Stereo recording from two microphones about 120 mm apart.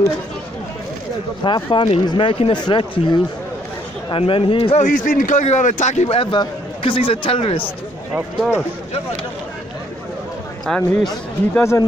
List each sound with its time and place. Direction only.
1.4 s speech: 45° left (ahead or behind)
4.7 s a man's voice: 90° left; by 6.2 s 65° left (ahead or behind)
6.3 s a man's voice: 45° left (ahead or behind)
8.4 s speech: 5° right (ahead or behind)
10.6 s speech: 5° left (ahead or behind)